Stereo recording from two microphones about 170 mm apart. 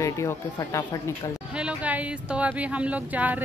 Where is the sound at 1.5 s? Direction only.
5° right (ahead or behind).